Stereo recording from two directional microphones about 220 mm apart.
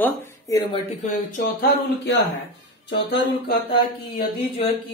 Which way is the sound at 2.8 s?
50° left (ahead or behind).